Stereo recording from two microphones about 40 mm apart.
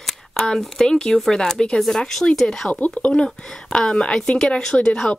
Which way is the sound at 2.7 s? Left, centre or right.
Left.